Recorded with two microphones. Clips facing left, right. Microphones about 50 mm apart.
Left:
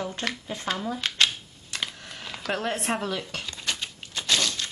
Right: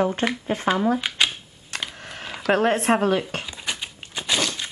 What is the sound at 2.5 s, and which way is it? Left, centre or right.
Speech, right.